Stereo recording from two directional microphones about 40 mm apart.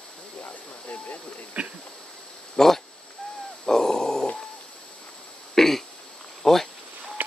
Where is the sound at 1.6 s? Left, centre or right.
Right.